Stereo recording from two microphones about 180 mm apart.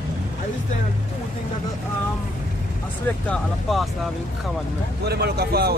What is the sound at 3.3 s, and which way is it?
Speech, centre (ahead or behind).